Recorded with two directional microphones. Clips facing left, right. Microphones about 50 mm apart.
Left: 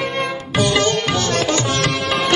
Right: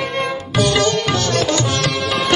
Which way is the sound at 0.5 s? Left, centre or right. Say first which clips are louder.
Right 1 dB; left.